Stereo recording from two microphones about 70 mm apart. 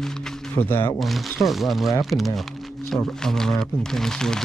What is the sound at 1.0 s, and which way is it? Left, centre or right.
Speech, centre.